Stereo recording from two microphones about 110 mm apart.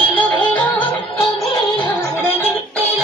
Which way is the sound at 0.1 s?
15° left (ahead or behind).